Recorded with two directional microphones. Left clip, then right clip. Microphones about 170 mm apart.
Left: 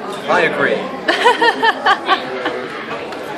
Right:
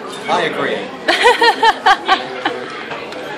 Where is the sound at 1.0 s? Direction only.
25° right (ahead or behind).